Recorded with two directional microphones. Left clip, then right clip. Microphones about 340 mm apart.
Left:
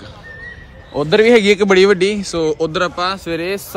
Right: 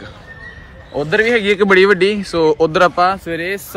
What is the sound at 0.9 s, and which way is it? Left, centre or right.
Speech, centre.